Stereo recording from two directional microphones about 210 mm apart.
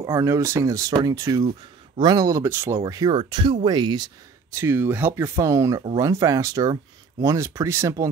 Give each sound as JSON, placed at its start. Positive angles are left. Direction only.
{"t": 0.0, "sound": "speech", "side_deg": -15}